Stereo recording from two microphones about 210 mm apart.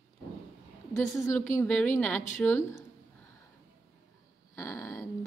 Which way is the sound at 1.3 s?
10° left (ahead or behind).